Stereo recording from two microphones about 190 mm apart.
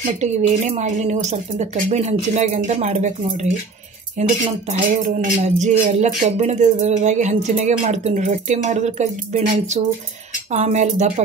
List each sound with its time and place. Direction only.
0.0 s speech: 35° right (ahead or behind)